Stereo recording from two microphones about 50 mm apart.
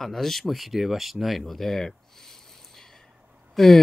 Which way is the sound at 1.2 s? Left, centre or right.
Centre.